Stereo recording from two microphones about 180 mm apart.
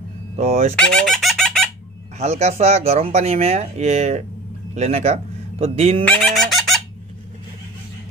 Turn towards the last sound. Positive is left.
turn(degrees=0)  # may be behind; listen again after turning